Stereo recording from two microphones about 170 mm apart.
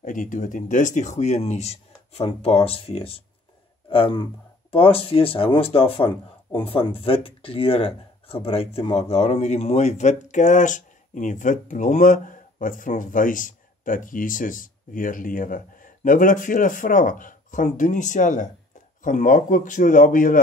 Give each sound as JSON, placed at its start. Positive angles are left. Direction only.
{"t": 0.0, "sound": "speech", "side_deg": 50}